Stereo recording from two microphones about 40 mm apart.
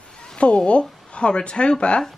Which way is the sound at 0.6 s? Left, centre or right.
Left.